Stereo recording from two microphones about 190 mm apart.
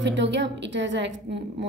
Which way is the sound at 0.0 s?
70° right (ahead or behind).